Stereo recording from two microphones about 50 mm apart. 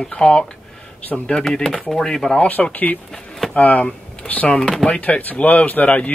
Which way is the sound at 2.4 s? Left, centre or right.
Left.